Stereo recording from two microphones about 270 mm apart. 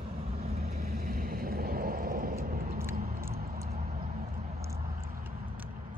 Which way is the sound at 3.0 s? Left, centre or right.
Right.